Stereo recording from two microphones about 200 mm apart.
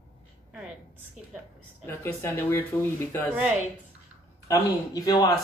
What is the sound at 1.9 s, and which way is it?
Speech, 10° left (ahead or behind).